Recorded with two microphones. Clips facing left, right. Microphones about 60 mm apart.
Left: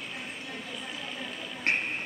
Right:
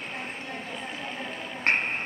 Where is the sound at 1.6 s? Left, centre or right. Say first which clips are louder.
Right 4 dB; right.